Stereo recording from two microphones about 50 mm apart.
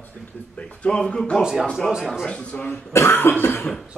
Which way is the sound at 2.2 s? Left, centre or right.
Centre.